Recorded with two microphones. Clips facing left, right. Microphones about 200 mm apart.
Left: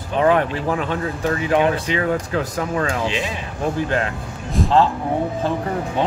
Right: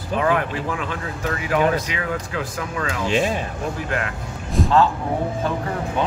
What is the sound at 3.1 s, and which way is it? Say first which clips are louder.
Speech: right 4 dB; 45° right (ahead or behind).